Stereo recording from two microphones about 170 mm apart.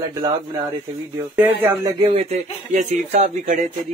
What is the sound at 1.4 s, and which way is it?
Speech, 10° right (ahead or behind).